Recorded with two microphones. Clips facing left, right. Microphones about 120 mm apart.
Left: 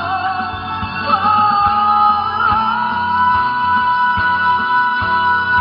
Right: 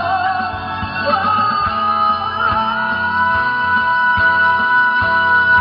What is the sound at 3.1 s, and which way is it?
Music, 25° left (ahead or behind).